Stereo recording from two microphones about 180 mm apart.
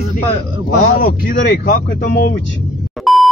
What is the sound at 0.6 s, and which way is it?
Speech, 55° left (ahead or behind).